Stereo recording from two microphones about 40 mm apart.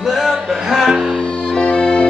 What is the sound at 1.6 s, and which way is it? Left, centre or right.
Music, left.